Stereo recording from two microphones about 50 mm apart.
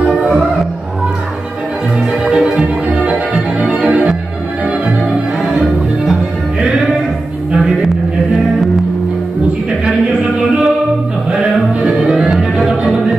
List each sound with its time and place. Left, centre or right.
2.2 s music: right
3.5 s organ: right
7.5 s a sound: centre
12.0 s music: centre